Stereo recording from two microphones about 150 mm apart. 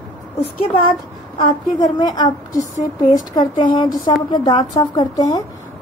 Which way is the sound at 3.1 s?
30° left (ahead or behind).